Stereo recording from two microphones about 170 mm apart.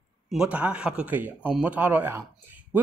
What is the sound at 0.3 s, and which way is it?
Speech, 5° right (ahead or behind).